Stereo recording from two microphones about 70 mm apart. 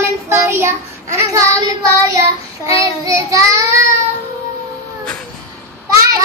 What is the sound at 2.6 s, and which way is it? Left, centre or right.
Child singing, right.